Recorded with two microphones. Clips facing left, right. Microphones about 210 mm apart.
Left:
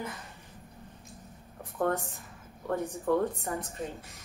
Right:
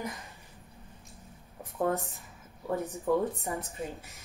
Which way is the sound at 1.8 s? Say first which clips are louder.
Even; 10° right (ahead or behind).